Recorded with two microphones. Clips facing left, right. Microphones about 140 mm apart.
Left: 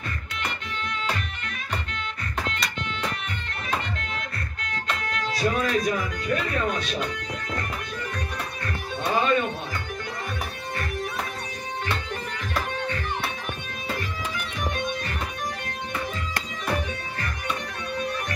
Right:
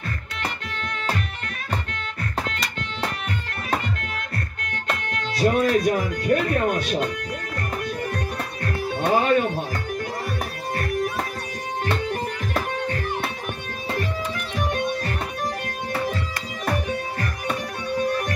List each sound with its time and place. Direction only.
5.4 s speech: 50° right (ahead or behind)
8.6 s music: 55° right (ahead or behind)
14.7 s music: 35° right (ahead or behind)